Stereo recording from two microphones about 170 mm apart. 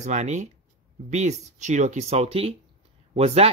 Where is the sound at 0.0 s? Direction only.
45° right (ahead or behind).